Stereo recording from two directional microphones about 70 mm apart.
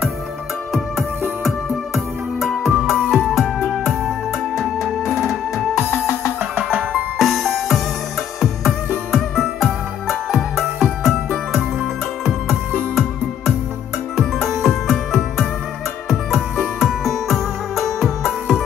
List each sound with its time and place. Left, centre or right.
2.4 s music: centre
5.1 s music: centre
5.8 s music: left
6.9 s music: centre
14.1 s music: centre